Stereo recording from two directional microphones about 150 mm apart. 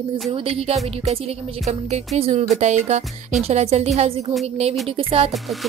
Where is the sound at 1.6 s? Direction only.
45° right (ahead or behind).